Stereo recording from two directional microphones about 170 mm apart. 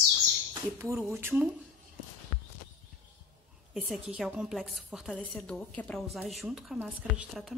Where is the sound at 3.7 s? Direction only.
Centre (ahead or behind).